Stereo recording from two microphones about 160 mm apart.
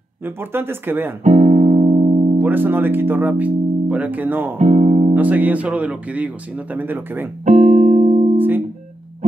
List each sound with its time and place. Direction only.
0.2 s speech: 15° right (ahead or behind)
1.2 s music: 45° right (ahead or behind)
2.3 s speech: 10° right (ahead or behind)
4.6 s speech: 45° right (ahead or behind)
5.1 s speech: 10° right (ahead or behind)
7.4 s music: 45° right (ahead or behind)
8.4 s music: 10° right (ahead or behind)